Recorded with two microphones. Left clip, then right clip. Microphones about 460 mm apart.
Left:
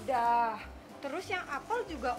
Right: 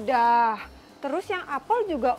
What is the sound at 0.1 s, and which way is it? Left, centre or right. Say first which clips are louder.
Speech: right 8 dB; right.